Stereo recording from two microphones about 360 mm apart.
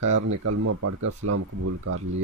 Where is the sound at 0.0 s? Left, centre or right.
Right.